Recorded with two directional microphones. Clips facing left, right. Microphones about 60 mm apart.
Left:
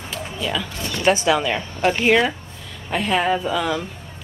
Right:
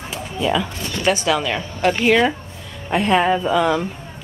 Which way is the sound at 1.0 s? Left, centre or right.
Left.